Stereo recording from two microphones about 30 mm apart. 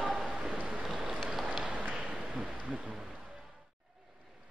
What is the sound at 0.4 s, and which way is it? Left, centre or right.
Rain, right.